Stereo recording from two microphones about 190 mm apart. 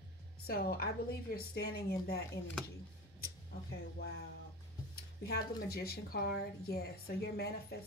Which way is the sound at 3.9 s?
55° left (ahead or behind).